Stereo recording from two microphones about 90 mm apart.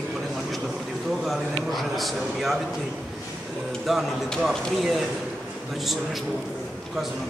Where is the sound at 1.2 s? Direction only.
Centre (ahead or behind).